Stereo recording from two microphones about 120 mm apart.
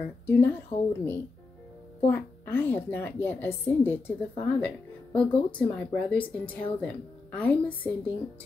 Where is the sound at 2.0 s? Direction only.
20° left (ahead or behind).